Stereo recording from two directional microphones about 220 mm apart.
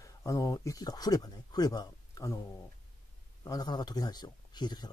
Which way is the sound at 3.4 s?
20° left (ahead or behind).